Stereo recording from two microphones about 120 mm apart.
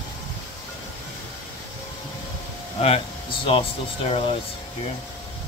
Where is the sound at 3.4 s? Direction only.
45° left (ahead or behind).